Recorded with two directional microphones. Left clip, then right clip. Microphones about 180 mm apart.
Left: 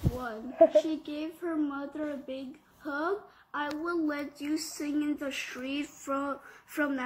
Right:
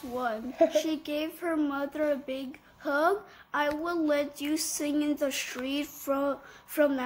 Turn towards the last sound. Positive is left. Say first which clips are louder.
# right 6 dB
turn(degrees=-40)  # may be behind; listen again after turning